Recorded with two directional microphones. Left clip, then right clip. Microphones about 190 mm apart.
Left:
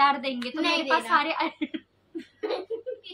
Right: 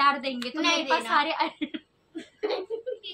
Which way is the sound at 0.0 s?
5° left (ahead or behind).